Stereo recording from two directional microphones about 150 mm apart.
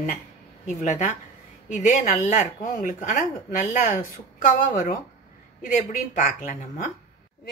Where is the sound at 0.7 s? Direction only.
50° left (ahead or behind).